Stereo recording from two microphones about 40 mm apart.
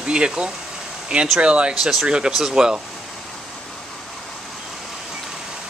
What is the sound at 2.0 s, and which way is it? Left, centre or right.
Speech, right.